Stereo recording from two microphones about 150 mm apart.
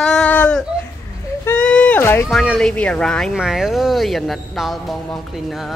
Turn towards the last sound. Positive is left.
turn(degrees=0)  # may be behind; listen again after turning